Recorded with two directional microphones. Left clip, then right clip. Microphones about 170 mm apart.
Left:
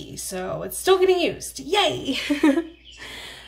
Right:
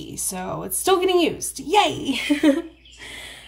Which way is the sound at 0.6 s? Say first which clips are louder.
Left 1 dB; 55° left (ahead or behind).